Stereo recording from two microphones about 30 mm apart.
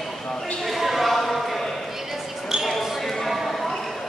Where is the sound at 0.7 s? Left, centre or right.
Centre.